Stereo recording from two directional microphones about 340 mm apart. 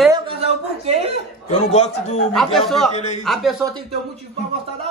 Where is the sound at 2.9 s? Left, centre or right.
Centre.